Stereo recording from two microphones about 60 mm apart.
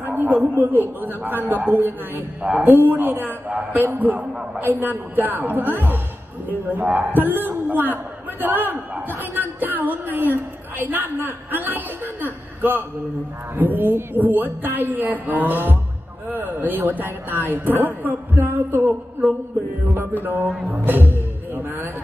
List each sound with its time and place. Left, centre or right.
0.0 s a man's voice: right
6.8 s a man's voice: right
20.0 s a man's voice: right
20.8 s music: right